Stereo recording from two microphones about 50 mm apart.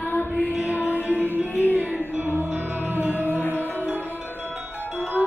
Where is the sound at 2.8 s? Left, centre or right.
Right.